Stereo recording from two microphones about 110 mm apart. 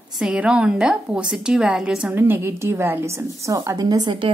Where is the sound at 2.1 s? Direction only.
20° right (ahead or behind).